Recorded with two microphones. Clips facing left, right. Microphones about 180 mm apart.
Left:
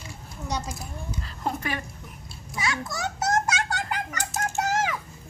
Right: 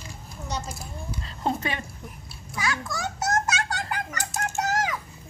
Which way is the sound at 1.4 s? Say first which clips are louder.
Right 2 dB; 25° right (ahead or behind).